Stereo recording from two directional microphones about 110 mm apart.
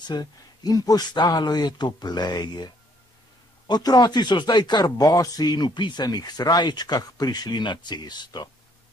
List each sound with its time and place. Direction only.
0.0 s speech: 40° left (ahead or behind)